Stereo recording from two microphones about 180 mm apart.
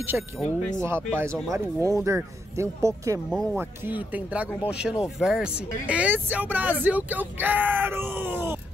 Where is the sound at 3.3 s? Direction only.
Centre (ahead or behind).